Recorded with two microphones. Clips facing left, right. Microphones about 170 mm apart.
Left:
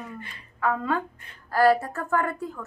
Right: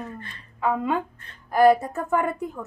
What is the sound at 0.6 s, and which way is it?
A woman's voice, 20° right (ahead or behind).